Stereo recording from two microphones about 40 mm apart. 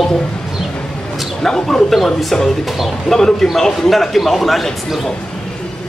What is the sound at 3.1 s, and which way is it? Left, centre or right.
A man's voice, centre.